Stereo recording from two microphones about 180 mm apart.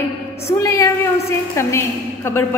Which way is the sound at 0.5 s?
15° left (ahead or behind).